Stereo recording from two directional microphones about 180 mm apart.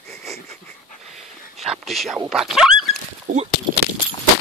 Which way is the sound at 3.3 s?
90° right.